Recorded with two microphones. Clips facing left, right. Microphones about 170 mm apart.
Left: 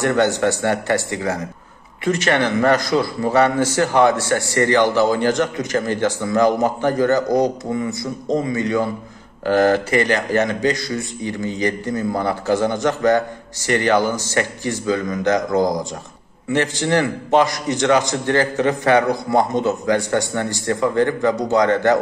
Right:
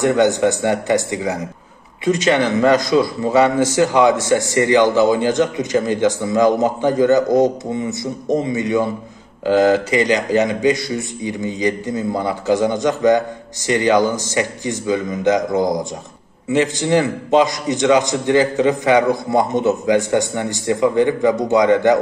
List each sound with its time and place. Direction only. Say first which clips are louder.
0.0 s a man's voice: right 3 dB; 15° right (ahead or behind)